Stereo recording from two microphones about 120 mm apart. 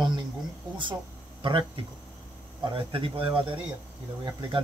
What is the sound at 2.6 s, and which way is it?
Speech, 45° right (ahead or behind).